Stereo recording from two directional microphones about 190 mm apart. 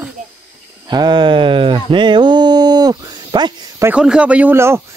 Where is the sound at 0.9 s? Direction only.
25° right (ahead or behind).